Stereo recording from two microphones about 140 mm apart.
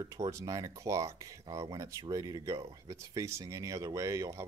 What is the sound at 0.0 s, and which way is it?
Speech, 25° right (ahead or behind).